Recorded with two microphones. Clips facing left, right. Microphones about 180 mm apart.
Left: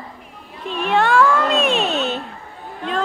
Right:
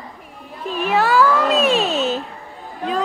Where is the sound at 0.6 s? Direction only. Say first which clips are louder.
Even; centre (ahead or behind).